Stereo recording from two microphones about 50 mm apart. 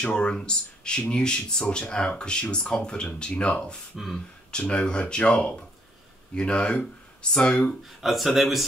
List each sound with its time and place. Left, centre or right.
0.0 s speech: centre
3.9 s speech: centre
4.5 s speech: centre
7.8 s speech: centre